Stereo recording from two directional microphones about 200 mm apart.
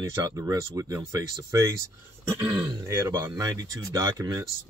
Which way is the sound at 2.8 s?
15° right (ahead or behind).